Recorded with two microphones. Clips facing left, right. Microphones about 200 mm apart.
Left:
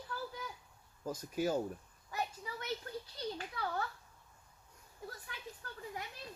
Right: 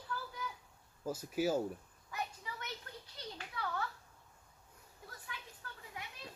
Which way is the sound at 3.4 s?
35° left (ahead or behind).